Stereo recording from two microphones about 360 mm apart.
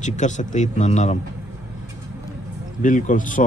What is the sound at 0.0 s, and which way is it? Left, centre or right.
Speech, centre.